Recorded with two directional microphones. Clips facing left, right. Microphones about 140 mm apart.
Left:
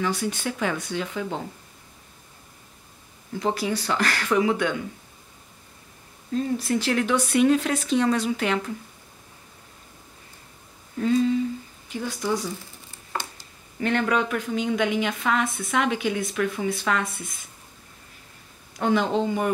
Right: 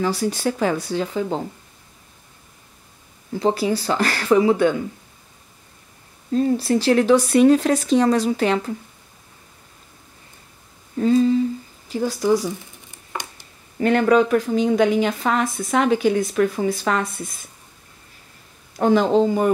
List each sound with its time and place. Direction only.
0.0 s speech: 35° right (ahead or behind)
3.3 s speech: 30° right (ahead or behind)
6.3 s speech: 35° right (ahead or behind)
11.0 s speech: 35° right (ahead or behind)
13.7 s speech: 40° right (ahead or behind)
18.8 s speech: 35° right (ahead or behind)